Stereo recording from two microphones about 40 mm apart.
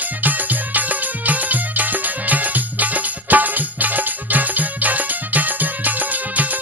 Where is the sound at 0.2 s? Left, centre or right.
Right.